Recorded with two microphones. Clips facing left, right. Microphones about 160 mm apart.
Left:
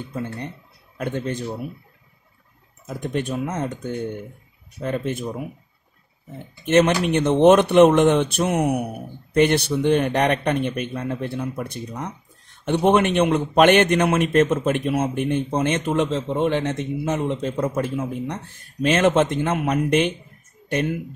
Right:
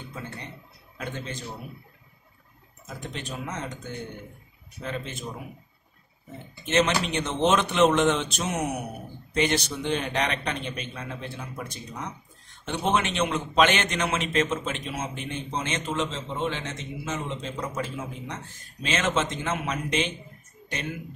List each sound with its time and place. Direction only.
0.9 s a man's voice: 55° left (ahead or behind)
3.0 s a man's voice: 55° left (ahead or behind)
4.8 s a man's voice: 55° left (ahead or behind)
6.6 s a man's voice: 55° left (ahead or behind)